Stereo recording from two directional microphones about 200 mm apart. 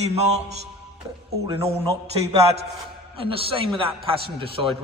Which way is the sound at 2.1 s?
30° right (ahead or behind).